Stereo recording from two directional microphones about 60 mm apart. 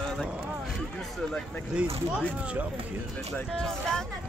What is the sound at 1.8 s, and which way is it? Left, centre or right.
Speech, centre.